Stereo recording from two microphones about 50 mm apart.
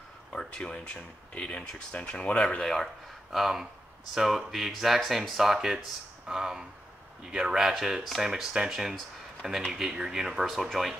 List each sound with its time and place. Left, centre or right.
0.3 s a sound: centre
0.7 s speech: left
2.6 s speech: centre